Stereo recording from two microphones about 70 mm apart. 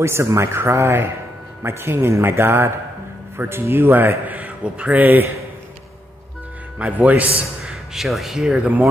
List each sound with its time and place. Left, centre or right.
0.0 s a man's voice: right
4.4 s speech: centre
6.8 s speech: right
7.6 s speech: centre